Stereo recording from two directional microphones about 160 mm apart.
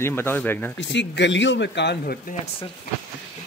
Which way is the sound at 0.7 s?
90° left.